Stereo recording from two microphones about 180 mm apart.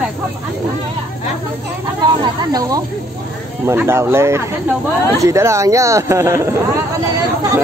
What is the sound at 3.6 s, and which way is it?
Speech, 15° right (ahead or behind).